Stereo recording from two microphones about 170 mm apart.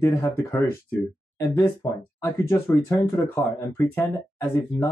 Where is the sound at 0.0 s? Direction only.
15° left (ahead or behind).